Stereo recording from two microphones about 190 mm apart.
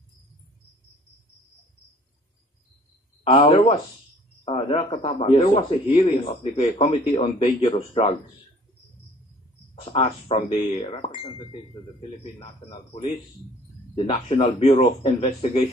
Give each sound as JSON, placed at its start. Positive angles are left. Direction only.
{"t": 3.3, "sound": "a man's voice", "side_deg": 30}
{"t": 9.8, "sound": "a man's voice", "side_deg": 30}